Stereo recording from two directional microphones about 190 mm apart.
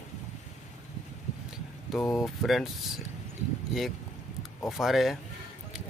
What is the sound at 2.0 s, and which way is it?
Speech, 15° left (ahead or behind).